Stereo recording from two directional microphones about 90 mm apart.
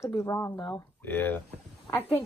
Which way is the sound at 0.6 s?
45° left (ahead or behind).